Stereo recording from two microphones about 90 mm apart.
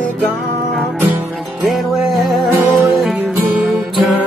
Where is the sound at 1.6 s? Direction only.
Centre (ahead or behind).